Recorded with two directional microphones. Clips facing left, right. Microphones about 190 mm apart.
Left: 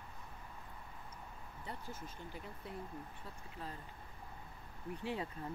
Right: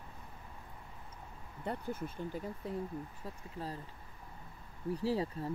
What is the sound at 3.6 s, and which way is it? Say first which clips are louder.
Speech: right 6 dB; 30° right (ahead or behind).